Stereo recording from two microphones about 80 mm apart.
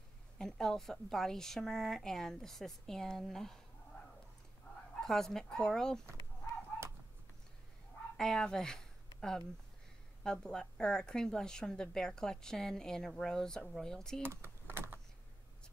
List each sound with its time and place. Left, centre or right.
0.4 s a woman's voice: centre
4.7 s a sound: left
5.0 s a woman's voice: centre
8.2 s a woman's voice: centre
10.2 s a woman's voice: centre
14.2 s a sound: right